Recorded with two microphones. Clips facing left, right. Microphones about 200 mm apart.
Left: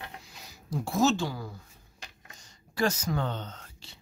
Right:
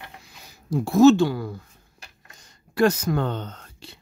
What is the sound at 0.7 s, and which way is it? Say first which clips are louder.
Speech: right 11 dB; 60° right (ahead or behind).